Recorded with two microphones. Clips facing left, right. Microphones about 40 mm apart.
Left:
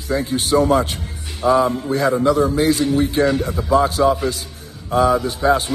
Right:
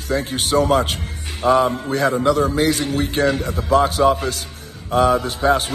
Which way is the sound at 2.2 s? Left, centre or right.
Right.